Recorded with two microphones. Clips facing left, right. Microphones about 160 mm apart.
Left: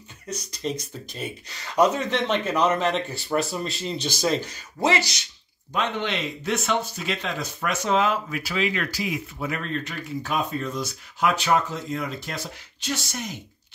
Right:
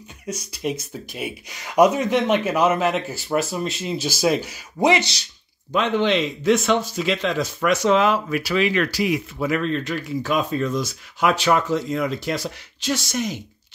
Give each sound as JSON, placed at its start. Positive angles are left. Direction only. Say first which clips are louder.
{"t": 0.3, "sound": "speech", "louder": "right 3 dB", "side_deg": -10}
{"t": 5.8, "sound": "speech", "louder": "right 7 dB", "side_deg": -90}